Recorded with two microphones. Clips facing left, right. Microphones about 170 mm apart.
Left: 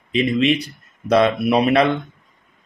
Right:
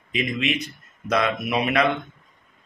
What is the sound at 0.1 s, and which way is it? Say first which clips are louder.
Speech: left 8 dB; 30° left (ahead or behind).